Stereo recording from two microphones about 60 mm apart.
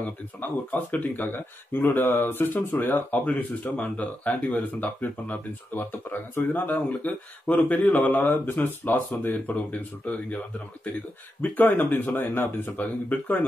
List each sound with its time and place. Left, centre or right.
0.4 s speech: left
11.4 s speech: left